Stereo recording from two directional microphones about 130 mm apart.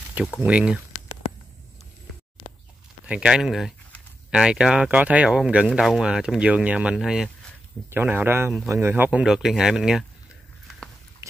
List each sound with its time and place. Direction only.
0.4 s speech: 10° right (ahead or behind)
3.1 s speech: 5° right (ahead or behind)